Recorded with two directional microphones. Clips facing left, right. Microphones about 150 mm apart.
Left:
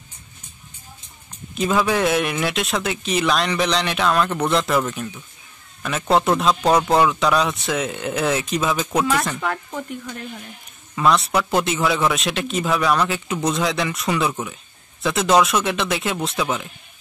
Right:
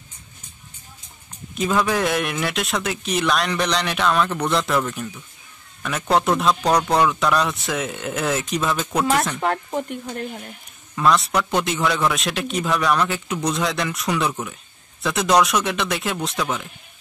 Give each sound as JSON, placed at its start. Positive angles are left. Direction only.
{"t": 1.5, "sound": "a man's voice", "side_deg": 0}
{"t": 9.4, "sound": "speech", "side_deg": -35}
{"t": 11.0, "sound": "a man's voice", "side_deg": 0}